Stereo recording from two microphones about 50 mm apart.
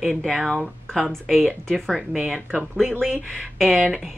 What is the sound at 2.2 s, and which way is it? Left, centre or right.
Speech, right.